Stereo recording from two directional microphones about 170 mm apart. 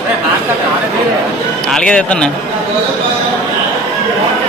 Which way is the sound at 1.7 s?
5° left (ahead or behind).